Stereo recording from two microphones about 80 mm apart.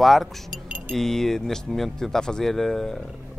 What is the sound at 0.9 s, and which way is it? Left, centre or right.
A man's voice, centre.